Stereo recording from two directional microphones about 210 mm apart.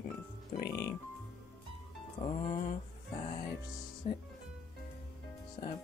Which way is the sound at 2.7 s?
35° left (ahead or behind).